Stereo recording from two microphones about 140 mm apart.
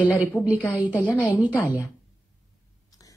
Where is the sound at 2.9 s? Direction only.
25° left (ahead or behind).